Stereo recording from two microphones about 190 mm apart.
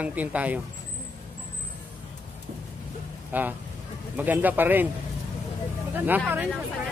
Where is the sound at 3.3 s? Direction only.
10° right (ahead or behind).